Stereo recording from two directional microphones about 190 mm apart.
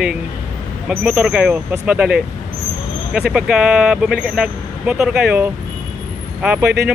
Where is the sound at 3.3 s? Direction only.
5° right (ahead or behind).